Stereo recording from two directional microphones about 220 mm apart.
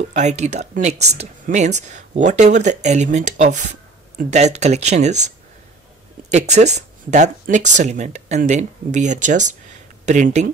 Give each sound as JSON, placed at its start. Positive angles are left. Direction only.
{"t": 0.0, "sound": "speech", "side_deg": -30}
{"t": 6.3, "sound": "speech", "side_deg": -30}